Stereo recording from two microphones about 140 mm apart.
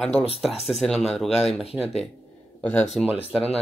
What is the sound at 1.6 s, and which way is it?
Speech, 45° left (ahead or behind).